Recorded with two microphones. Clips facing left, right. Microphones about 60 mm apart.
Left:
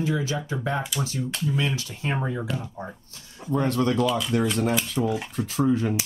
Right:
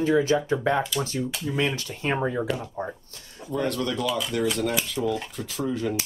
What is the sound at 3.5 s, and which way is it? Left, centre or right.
Speech, left.